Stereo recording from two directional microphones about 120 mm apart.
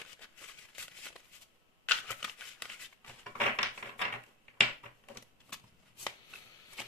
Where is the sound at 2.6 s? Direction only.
10° left (ahead or behind).